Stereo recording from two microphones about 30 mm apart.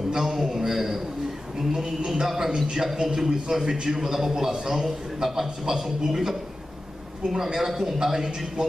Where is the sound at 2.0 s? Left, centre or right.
Centre.